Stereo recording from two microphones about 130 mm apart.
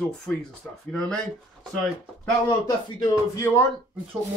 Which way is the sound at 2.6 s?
30° left (ahead or behind).